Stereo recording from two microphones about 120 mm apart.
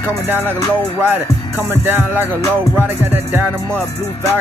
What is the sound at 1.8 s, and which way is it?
Music, 15° right (ahead or behind).